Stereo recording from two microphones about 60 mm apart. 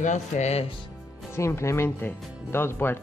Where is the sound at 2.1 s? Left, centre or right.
Left.